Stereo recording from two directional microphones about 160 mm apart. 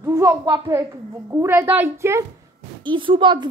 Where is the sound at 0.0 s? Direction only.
15° right (ahead or behind).